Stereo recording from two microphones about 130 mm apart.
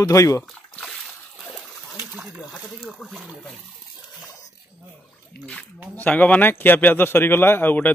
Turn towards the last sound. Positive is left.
turn(degrees=15)  # may be behind; listen again after turning